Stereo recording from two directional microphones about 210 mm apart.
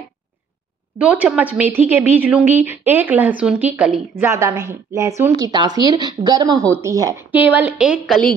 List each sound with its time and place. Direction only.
0.9 s a woman's voice: 5° right (ahead or behind)